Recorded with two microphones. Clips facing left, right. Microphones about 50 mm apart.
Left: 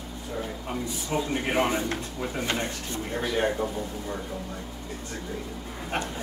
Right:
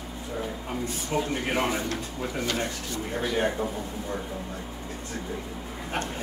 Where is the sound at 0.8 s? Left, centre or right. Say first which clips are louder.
Right 1 dB; right.